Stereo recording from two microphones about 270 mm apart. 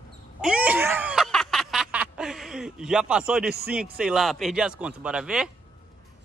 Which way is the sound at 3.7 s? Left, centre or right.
Centre.